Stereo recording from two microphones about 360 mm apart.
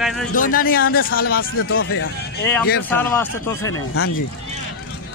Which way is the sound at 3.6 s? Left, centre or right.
Left.